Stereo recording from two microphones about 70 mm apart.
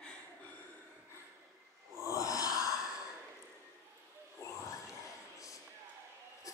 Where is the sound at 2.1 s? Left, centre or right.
Left.